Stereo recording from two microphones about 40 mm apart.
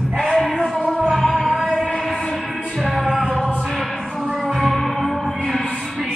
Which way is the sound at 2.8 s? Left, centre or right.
Centre.